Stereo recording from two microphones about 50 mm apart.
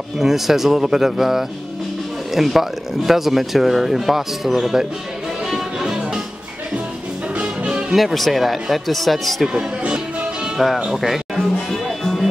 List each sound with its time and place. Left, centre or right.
0.2 s speech: centre
5.9 s music: centre
7.4 s music: centre
7.9 s speech: centre
9.5 s speech: centre
10.6 s speech: centre
11.3 s music: centre